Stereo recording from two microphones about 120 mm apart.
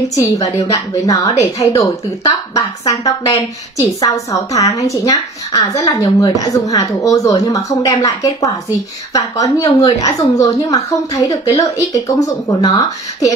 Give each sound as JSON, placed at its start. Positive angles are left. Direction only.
{"t": 0.1, "sound": "a woman's voice", "side_deg": 30}